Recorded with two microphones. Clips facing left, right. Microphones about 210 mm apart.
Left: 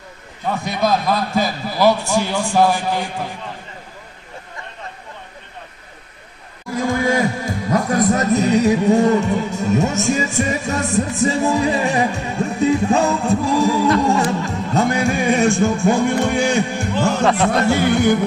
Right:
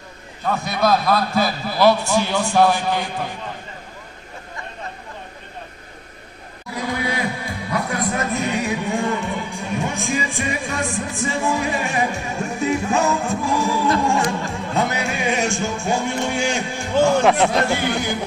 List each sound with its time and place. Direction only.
0.7 s a man's voice: 20° left (ahead or behind)
6.7 s speech: 45° left (ahead or behind)
14.4 s music: 40° left (ahead or behind); by 16.8 s 55° left (ahead or behind)
17.2 s speech: 15° right (ahead or behind)